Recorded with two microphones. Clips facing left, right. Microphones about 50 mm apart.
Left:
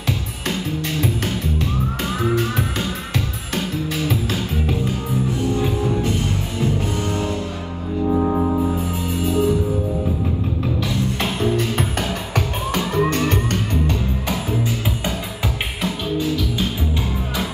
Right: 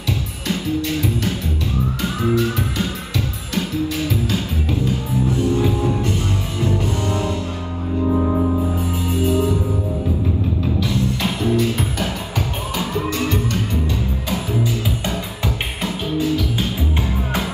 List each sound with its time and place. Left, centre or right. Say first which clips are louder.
0.5 s music: right 3 dB; left
6.6 s music: right 1 dB; right
8.1 s music: left 1 dB; centre
9.3 s music: left 2 dB; right
10.8 s music: right 2 dB; left
15.8 s music: right 1 dB; right